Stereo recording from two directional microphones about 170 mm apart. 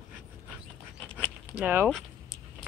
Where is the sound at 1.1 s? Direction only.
10° left (ahead or behind).